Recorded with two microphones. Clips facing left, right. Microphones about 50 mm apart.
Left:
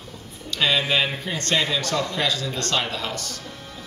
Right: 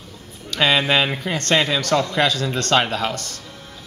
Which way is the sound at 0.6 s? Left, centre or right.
Right.